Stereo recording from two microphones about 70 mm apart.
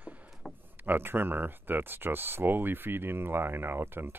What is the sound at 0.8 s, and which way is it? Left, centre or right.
Speech, right.